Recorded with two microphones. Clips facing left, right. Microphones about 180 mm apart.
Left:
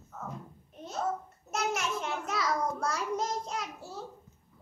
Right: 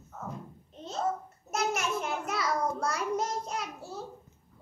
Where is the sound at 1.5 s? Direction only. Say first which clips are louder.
Right 2 dB; centre (ahead or behind).